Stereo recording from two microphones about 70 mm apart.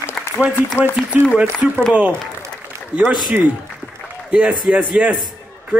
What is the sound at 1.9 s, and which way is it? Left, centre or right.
Speech, centre.